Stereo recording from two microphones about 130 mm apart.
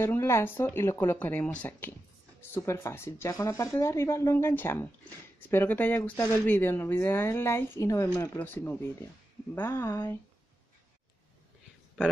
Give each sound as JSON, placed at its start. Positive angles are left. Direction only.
{"t": 0.0, "sound": "speech", "side_deg": 20}